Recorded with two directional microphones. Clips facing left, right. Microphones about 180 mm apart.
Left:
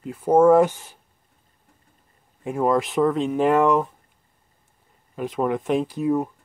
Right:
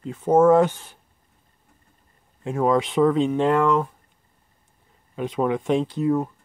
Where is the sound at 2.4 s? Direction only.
5° left (ahead or behind).